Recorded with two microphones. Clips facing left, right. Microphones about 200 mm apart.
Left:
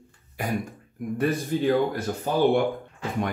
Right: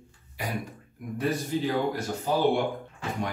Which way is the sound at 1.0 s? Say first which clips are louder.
Left 7 dB; 45° left (ahead or behind).